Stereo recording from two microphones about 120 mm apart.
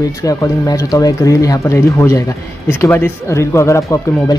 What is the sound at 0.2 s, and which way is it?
Speech, 30° left (ahead or behind).